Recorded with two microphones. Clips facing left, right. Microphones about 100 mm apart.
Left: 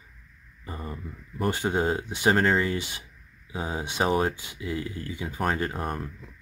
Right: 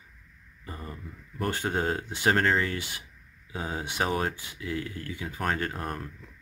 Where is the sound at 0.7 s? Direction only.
25° left (ahead or behind).